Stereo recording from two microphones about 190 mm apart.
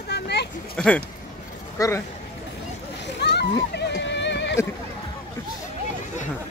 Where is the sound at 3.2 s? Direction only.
60° left (ahead or behind).